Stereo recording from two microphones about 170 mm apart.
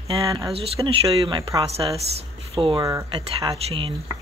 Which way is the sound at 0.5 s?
35° right (ahead or behind).